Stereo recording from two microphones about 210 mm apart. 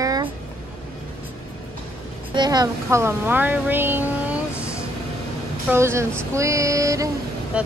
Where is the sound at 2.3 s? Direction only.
20° right (ahead or behind).